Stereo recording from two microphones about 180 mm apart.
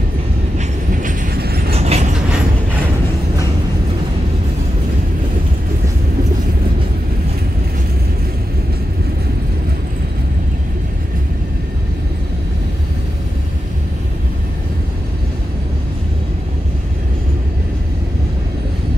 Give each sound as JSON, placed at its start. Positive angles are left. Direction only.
{"t": 1.3, "sound": "vehicle", "side_deg": -60}
{"t": 1.7, "sound": "train", "side_deg": -35}